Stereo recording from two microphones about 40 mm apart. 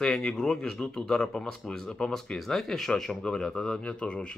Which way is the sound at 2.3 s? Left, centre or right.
Centre.